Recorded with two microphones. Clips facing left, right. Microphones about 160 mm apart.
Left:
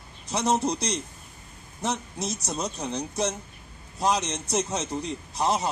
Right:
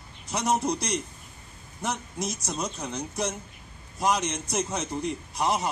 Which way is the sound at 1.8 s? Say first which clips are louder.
Left 1 dB; 35° left (ahead or behind).